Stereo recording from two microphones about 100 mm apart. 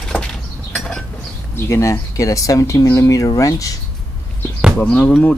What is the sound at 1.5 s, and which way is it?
Speech, 25° left (ahead or behind).